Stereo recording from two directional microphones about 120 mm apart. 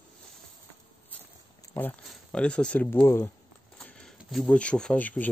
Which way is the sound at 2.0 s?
10° left (ahead or behind).